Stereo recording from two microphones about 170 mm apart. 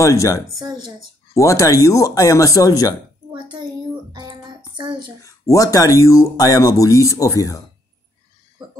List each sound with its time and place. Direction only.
0.0 s speech: 20° left (ahead or behind)
0.6 s a woman's voice: 25° right (ahead or behind)
1.3 s speech: 20° left (ahead or behind)
3.3 s hands: 25° right (ahead or behind)
4.1 s a sound: 25° right (ahead or behind)
4.7 s a woman's voice: 25° right (ahead or behind)
5.2 s speech: 20° left (ahead or behind)